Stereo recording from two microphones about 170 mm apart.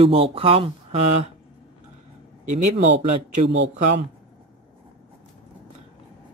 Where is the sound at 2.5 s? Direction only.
45° right (ahead or behind).